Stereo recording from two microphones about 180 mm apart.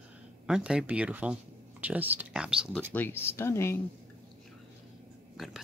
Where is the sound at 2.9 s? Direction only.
10° left (ahead or behind).